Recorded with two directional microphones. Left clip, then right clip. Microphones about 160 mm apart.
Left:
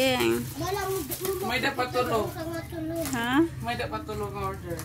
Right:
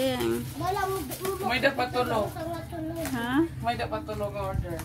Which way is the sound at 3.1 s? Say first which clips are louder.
Left 2 dB; 10° left (ahead or behind).